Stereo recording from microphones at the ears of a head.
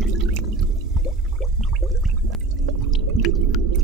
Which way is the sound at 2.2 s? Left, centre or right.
Right.